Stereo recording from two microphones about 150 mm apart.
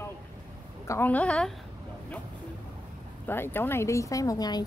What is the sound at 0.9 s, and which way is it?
Speech, 10° left (ahead or behind).